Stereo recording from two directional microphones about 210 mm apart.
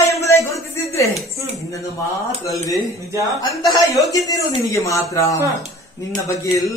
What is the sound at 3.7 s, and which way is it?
Speech, 15° left (ahead or behind).